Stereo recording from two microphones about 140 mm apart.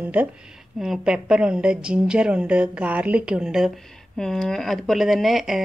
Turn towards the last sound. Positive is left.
turn(degrees=0)  # may be behind; listen again after turning